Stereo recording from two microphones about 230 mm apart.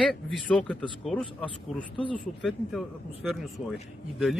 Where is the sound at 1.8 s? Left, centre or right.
Left.